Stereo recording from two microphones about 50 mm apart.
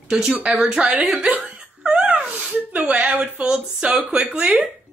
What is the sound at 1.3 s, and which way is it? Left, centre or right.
Laughter, right.